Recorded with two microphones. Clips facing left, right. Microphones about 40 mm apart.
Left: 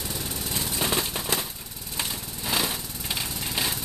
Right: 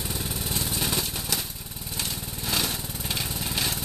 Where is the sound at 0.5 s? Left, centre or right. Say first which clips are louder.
Left 3 dB; centre.